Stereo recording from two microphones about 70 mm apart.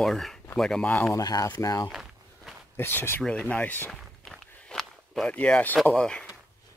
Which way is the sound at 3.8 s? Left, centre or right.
Centre.